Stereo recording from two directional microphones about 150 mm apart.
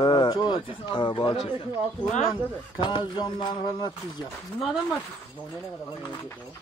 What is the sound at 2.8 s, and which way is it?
Speech, 30° left (ahead or behind).